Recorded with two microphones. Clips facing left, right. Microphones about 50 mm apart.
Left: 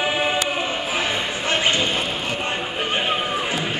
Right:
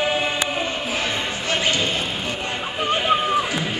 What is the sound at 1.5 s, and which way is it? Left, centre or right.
Basketball bounce, left.